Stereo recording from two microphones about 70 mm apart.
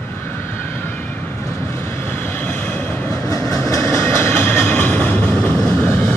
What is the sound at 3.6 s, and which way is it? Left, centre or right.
Train, left.